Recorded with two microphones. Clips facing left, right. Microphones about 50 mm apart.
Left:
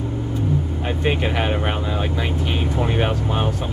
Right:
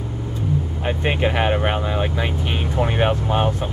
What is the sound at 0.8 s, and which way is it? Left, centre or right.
Speech, centre.